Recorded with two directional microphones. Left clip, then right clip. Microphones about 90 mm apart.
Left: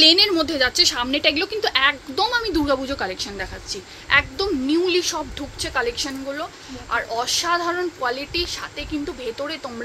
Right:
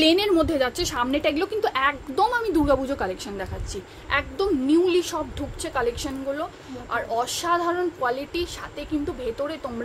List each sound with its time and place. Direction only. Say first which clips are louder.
0.0 s a woman's voice: left 4 dB; 30° right (ahead or behind)
0.9 s a woman's voice: left 3 dB; 10° right (ahead or behind)